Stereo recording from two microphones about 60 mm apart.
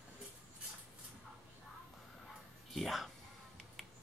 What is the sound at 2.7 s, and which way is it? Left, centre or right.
Music, centre.